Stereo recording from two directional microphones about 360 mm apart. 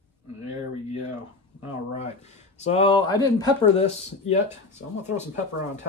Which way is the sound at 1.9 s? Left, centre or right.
Centre.